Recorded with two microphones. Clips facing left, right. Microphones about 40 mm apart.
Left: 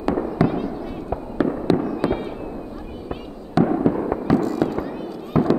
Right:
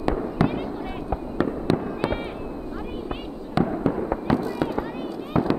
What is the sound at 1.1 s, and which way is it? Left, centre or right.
Fireworks, centre.